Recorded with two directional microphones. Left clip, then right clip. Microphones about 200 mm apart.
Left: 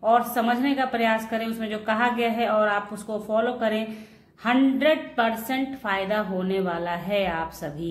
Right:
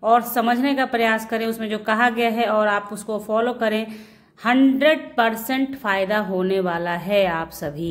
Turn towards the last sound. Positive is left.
turn(degrees=-45)  # may be behind; listen again after turning